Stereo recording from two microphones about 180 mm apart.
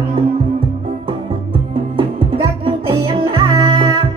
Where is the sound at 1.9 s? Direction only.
30° right (ahead or behind).